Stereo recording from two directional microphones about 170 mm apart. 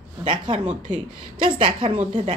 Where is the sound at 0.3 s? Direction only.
30° right (ahead or behind).